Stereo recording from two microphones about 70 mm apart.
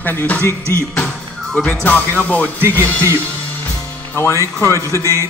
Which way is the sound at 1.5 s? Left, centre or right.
Centre.